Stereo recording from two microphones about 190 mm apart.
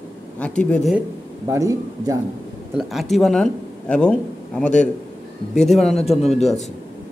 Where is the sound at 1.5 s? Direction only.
15° right (ahead or behind).